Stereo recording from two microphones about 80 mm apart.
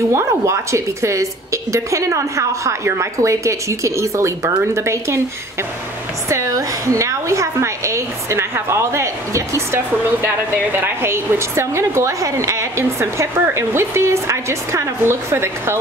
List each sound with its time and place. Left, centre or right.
0.1 s a woman's voice: right
6.2 s a woman's voice: right
10.2 s a woman's voice: right